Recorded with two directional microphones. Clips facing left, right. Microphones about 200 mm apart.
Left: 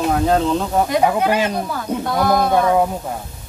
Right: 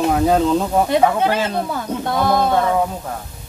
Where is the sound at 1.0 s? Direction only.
15° left (ahead or behind).